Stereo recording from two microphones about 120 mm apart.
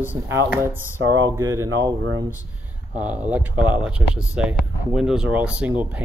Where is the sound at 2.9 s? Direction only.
10° right (ahead or behind).